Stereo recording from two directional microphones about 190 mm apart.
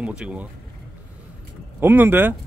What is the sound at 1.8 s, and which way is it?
Speech, 10° right (ahead or behind).